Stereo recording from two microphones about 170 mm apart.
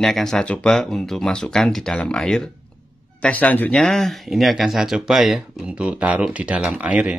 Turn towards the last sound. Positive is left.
turn(degrees=-10)  # may be behind; listen again after turning